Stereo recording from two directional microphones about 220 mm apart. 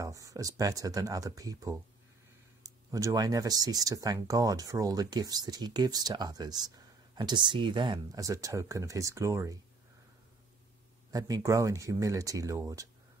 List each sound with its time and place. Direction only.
0.0 s speech: 15° right (ahead or behind)
11.1 s speech: 15° right (ahead or behind)